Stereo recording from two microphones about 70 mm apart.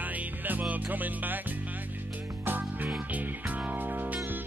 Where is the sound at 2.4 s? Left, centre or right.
Right.